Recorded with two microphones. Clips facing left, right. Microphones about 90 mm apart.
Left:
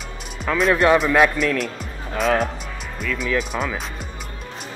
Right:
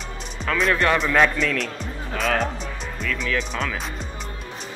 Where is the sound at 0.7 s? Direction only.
10° left (ahead or behind).